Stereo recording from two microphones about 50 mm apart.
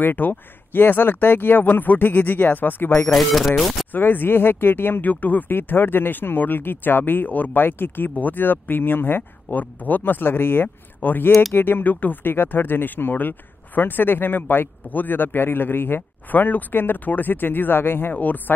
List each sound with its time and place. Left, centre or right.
0.0 s speech: left
3.1 s speech: centre
3.9 s speech: left
5.1 s speech: left
18.1 s speech: left